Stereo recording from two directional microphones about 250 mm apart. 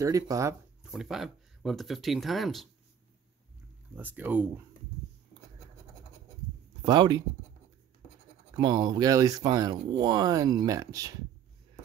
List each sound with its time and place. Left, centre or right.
0.0 s speech: centre
0.9 s speech: centre
3.9 s speech: centre
6.9 s speech: centre
8.5 s speech: centre